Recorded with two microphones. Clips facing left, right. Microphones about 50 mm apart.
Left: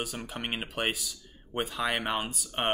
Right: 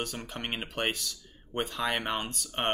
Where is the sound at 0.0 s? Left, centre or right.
Centre.